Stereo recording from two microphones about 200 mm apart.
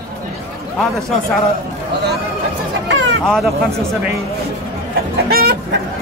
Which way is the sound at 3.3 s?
Centre (ahead or behind).